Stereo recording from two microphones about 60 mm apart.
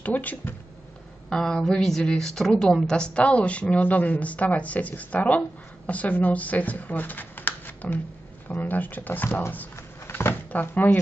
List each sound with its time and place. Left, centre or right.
0.0 s a woman's voice: left
1.3 s a woman's voice: centre; by 9.4 s left
9.8 s cupboard open or close: left
10.5 s speech: left